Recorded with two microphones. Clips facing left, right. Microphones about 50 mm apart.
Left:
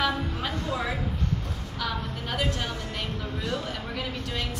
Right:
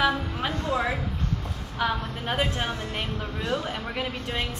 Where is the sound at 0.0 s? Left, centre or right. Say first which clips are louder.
Right 3 dB; centre.